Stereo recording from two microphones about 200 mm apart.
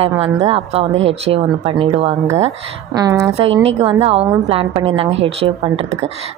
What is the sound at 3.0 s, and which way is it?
Speech, 15° right (ahead or behind).